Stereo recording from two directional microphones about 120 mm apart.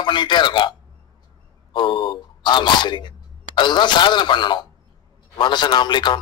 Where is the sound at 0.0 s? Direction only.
40° left (ahead or behind).